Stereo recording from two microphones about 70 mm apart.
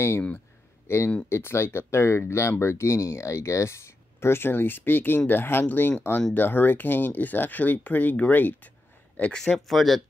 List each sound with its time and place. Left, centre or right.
0.8 s speech: left; by 9.4 s centre
9.7 s speech: centre